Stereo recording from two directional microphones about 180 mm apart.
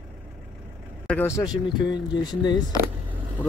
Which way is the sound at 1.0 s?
10° left (ahead or behind).